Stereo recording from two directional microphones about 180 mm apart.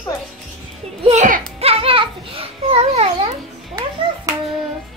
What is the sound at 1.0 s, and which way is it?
Children playing, 45° right (ahead or behind).